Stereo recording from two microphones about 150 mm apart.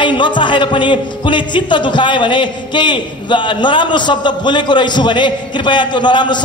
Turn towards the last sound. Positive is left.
turn(degrees=30)  # may be behind; listen again after turning